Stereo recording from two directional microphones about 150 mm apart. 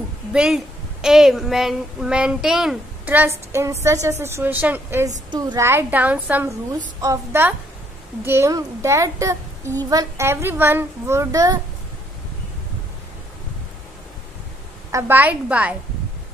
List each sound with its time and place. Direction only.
0.3 s a child's voice: 5° right (ahead or behind)
5.3 s a child's voice: 30° right (ahead or behind)
5.6 s a child's voice: 15° right (ahead or behind)
14.9 s a child's voice: 15° right (ahead or behind)